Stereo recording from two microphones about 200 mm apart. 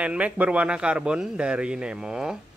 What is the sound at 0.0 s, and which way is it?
A man's voice, 5° right (ahead or behind).